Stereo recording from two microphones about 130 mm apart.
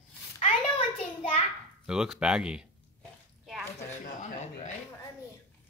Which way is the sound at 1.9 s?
5° right (ahead or behind).